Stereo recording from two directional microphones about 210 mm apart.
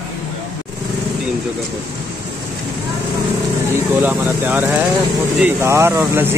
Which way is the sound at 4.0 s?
10° right (ahead or behind).